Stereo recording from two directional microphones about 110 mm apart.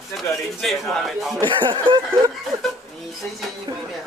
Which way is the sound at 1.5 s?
45° right (ahead or behind).